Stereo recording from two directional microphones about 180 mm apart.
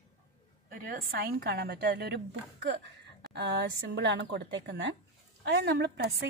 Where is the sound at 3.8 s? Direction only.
75° right (ahead or behind).